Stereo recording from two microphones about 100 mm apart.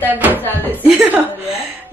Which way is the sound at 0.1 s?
15° right (ahead or behind).